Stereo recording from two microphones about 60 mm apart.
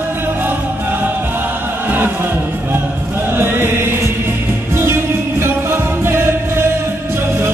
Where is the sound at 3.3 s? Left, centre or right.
Right.